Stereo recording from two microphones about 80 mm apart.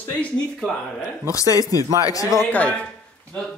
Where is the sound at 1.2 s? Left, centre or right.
Left.